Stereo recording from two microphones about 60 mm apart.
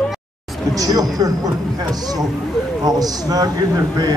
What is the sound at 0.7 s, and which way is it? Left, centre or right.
Speech, right.